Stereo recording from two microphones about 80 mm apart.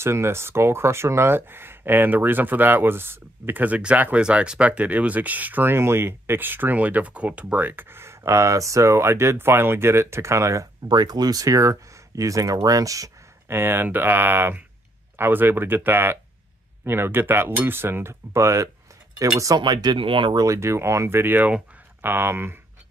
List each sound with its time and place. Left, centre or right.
0.0 s speech: right
10.9 s speech: right
13.5 s speech: right
19.6 s speech: right
20.3 s speech: right